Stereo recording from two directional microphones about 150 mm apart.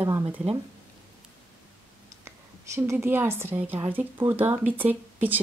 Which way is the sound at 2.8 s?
15° right (ahead or behind).